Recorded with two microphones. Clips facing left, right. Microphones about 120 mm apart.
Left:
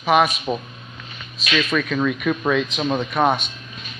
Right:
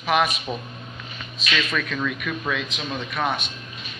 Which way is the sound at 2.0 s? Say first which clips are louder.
Left 7 dB; 35° left (ahead or behind).